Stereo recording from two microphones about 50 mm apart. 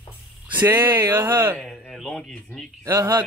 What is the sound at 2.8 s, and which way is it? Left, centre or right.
Speech, right.